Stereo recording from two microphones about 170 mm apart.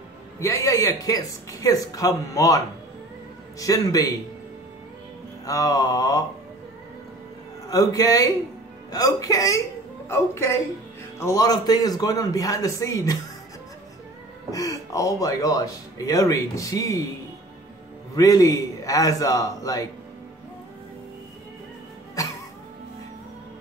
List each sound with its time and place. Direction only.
0.4 s speech: 15° left (ahead or behind)
5.4 s speech: 20° left (ahead or behind)
7.6 s a woman's voice: 20° left (ahead or behind)
14.5 s speech: 20° left (ahead or behind)
18.1 s speech: 20° left (ahead or behind)
22.2 s music: 20° left (ahead or behind)